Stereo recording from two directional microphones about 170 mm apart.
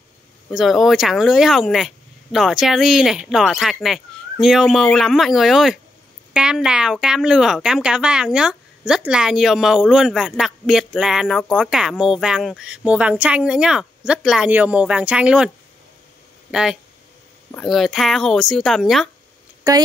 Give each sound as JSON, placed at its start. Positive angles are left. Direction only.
{"t": 0.5, "sound": "speech", "side_deg": 0}
{"t": 17.5, "sound": "speech", "side_deg": 0}
{"t": 19.7, "sound": "speech", "side_deg": -20}